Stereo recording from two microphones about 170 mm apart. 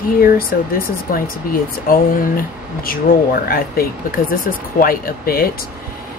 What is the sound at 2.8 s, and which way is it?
Speech, 60° left (ahead or behind).